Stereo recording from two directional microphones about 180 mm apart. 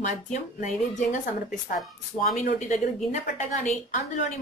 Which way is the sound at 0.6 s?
40° left (ahead or behind).